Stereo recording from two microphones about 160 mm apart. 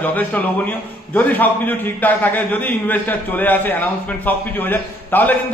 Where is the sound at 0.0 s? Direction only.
10° left (ahead or behind).